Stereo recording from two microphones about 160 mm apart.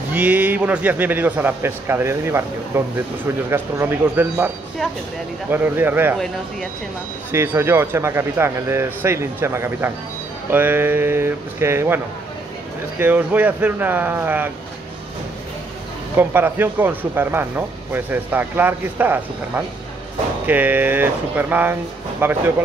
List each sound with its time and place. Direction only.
0.1 s speech: 10° right (ahead or behind)
5.5 s speech: 10° right (ahead or behind)
7.2 s speech: 15° right (ahead or behind)
13.0 s speech: 10° right (ahead or behind)
16.2 s speech: 10° right (ahead or behind)